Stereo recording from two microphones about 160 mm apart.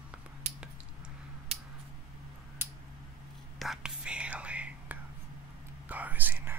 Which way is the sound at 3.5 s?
5° right (ahead or behind).